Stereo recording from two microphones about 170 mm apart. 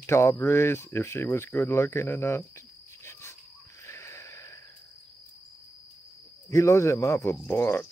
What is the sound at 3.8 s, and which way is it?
Wheeze, 15° left (ahead or behind).